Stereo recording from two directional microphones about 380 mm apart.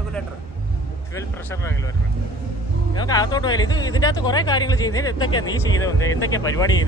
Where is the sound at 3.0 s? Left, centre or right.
Centre.